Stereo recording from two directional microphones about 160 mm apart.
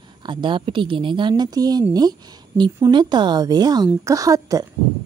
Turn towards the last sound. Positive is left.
turn(degrees=-20)  # may be behind; listen again after turning